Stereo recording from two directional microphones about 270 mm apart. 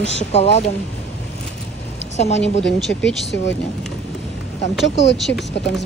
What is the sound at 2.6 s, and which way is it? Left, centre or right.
Speech, centre.